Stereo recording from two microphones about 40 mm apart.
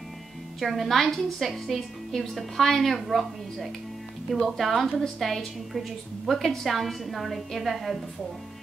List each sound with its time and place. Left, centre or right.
0.6 s a woman's voice: centre